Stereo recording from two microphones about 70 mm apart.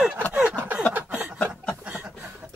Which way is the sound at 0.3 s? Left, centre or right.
Centre.